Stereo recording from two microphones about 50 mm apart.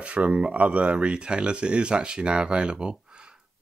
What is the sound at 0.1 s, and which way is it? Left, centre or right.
Speech, right.